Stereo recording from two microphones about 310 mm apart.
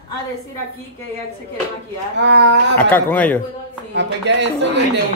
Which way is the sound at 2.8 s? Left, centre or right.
Centre.